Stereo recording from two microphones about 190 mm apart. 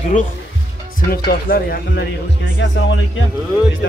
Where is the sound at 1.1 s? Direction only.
55° left (ahead or behind).